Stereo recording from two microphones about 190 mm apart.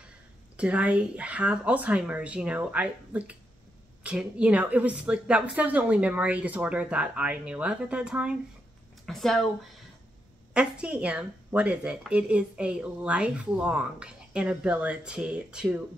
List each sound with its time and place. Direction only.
0.6 s a woman's voice: 5° right (ahead or behind)
10.5 s a woman's voice: 5° right (ahead or behind)